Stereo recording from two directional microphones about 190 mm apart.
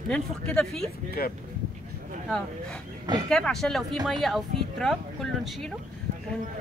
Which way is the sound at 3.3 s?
Centre (ahead or behind).